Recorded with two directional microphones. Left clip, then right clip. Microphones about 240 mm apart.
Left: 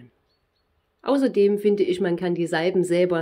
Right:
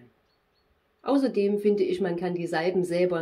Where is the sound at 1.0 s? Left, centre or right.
Left.